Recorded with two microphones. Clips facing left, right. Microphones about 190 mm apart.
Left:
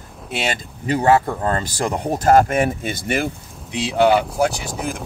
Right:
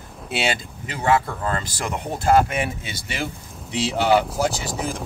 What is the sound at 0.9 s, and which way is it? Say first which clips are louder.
Speech: left 4 dB; 40° left (ahead or behind).